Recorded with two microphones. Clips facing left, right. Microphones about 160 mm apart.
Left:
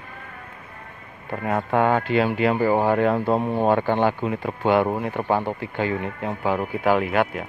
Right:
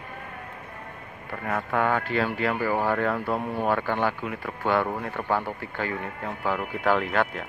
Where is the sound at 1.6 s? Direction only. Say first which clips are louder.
Left 5 dB; 25° left (ahead or behind).